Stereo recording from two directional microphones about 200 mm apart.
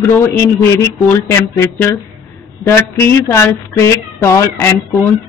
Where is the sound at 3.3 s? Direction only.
15° left (ahead or behind).